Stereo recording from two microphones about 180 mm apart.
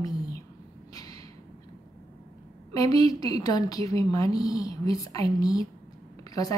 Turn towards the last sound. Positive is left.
turn(degrees=20)  # may be behind; listen again after turning